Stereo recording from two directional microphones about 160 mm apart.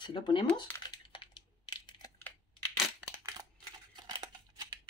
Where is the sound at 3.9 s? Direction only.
25° right (ahead or behind).